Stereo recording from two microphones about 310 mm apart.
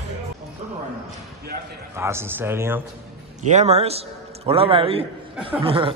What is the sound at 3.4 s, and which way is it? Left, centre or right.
A man's voice, right.